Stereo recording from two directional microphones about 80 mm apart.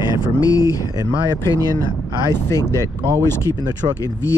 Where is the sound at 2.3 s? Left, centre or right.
Left.